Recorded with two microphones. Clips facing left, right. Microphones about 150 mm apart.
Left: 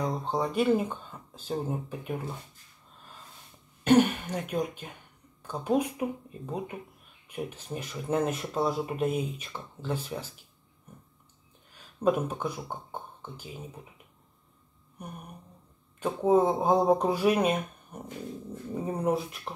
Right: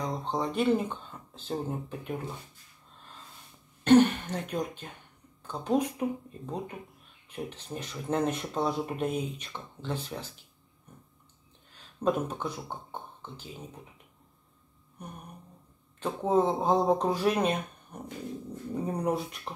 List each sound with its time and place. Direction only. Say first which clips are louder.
0.0 s speech: left 2 dB; 10° left (ahead or behind)
3.8 s speech: right 2 dB; 10° left (ahead or behind)
11.7 s speech: left 2 dB; 10° left (ahead or behind)
16.0 s speech: left 3 dB; 10° left (ahead or behind)